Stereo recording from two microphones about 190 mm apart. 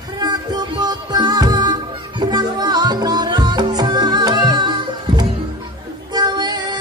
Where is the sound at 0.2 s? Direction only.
20° right (ahead or behind).